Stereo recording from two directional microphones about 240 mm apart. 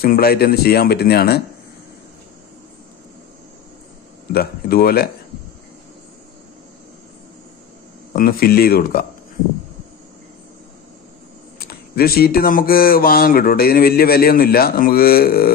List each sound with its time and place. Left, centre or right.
0.0 s speech: left
4.3 s speech: left
8.1 s speech: left
11.6 s speech: left